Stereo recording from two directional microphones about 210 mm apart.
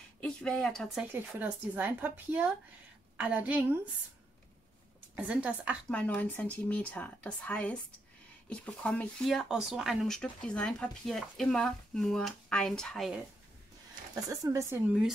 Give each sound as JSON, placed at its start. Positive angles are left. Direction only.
{"t": 0.2, "sound": "speech", "side_deg": 5}
{"t": 1.1, "sound": "speech", "side_deg": -10}
{"t": 5.1, "sound": "speech", "side_deg": -5}
{"t": 5.9, "sound": "speech", "side_deg": 5}
{"t": 14.4, "sound": "speech", "side_deg": -15}